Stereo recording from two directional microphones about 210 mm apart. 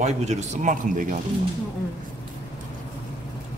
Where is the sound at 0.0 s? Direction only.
35° right (ahead or behind).